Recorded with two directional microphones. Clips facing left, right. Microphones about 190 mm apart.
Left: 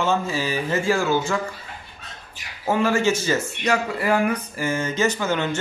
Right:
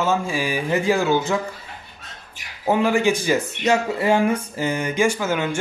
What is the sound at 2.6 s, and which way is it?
Speech, 15° right (ahead or behind).